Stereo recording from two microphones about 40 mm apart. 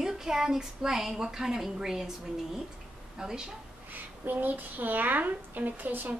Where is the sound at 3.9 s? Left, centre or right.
Right.